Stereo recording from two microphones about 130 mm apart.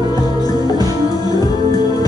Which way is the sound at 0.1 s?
30° left (ahead or behind).